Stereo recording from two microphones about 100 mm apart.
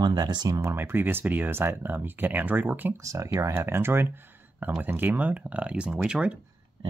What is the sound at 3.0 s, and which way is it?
Speech, 35° right (ahead or behind).